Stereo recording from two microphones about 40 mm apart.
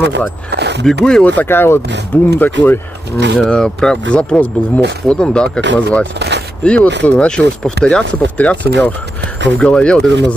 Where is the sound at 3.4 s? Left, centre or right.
Centre.